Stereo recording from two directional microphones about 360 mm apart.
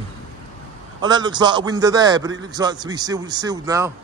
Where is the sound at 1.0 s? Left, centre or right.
Centre.